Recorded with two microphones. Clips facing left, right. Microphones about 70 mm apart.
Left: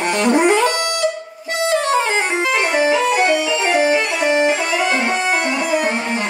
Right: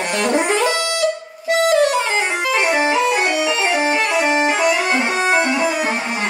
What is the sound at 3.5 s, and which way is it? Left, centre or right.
Music, right.